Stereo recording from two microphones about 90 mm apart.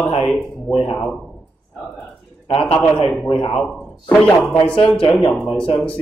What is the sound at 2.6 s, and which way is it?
Speech, 15° left (ahead or behind).